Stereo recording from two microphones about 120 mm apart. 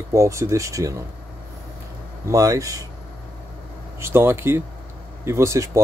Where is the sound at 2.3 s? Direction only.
30° right (ahead or behind).